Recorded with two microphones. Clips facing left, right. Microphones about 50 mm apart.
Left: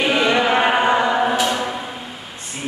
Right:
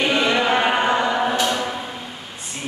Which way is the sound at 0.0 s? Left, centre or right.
Centre.